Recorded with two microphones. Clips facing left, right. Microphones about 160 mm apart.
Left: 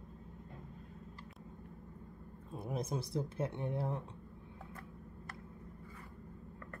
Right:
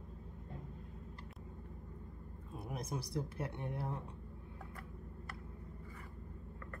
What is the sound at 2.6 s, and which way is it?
Speech, 25° left (ahead or behind).